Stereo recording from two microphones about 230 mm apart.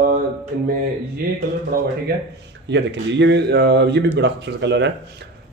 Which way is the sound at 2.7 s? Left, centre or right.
Right.